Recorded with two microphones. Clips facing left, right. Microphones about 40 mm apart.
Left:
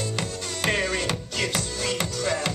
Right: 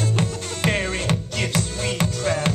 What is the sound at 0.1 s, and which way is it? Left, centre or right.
Music, right.